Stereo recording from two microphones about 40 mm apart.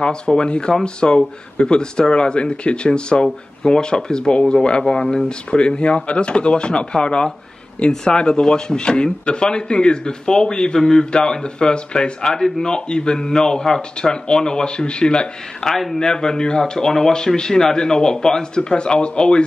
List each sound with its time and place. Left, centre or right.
0.0 s speech: left
11.1 s speech: left
12.7 s speech: left
15.7 s speech: centre
16.0 s speech: centre